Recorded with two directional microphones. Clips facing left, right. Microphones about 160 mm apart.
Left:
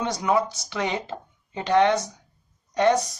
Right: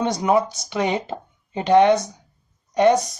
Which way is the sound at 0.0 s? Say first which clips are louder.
Right 4 dB; 20° right (ahead or behind).